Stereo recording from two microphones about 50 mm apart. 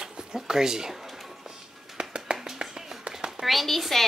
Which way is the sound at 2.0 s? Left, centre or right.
Centre.